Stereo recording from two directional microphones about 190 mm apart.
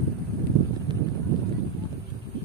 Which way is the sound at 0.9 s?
25° right (ahead or behind).